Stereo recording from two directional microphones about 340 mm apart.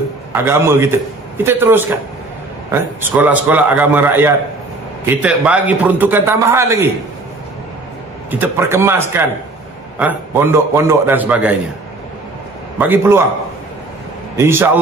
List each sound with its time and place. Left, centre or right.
0.3 s a man's voice: centre
8.3 s a man's voice: centre
12.7 s a man's voice: centre
14.3 s a man's voice: centre